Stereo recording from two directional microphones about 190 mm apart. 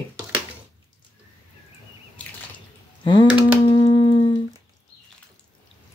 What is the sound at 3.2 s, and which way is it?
Computer keyboard, 10° right (ahead or behind).